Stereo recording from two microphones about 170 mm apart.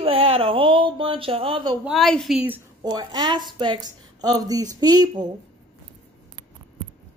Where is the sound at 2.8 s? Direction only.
25° right (ahead or behind).